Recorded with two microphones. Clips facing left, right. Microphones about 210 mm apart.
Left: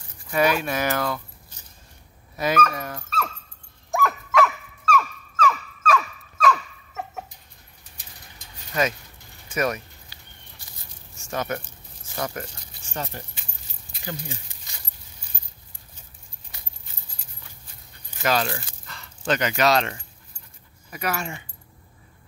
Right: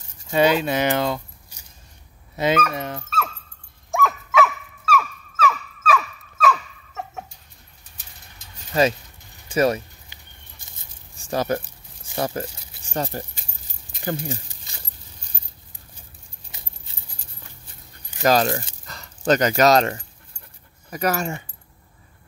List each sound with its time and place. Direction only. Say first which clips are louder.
0.3 s speech: right 4 dB; 25° right (ahead or behind)
1.5 s a sound: even; 10° right (ahead or behind)
2.3 s speech: right 2 dB; 25° right (ahead or behind)
3.9 s dog: right 1 dB; centre (ahead or behind)
9.5 s speech: right 6 dB; 30° right (ahead or behind)
11.1 s speech: right 5 dB; 35° right (ahead or behind)
12.9 s speech: right 6 dB; 40° right (ahead or behind)
18.2 s speech: right 6 dB; 40° right (ahead or behind)